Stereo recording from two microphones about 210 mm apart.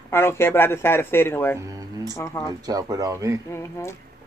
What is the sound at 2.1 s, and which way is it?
Speech, 15° left (ahead or behind).